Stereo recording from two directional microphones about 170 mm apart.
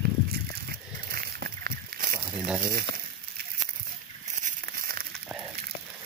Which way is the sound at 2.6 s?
60° right (ahead or behind).